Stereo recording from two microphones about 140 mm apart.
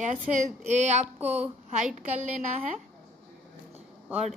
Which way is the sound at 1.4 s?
55° right (ahead or behind).